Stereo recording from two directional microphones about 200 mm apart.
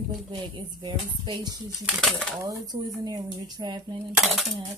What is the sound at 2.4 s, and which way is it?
Speech, 15° right (ahead or behind).